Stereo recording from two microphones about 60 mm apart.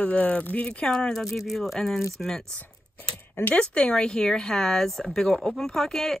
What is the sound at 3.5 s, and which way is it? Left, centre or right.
Speech, centre.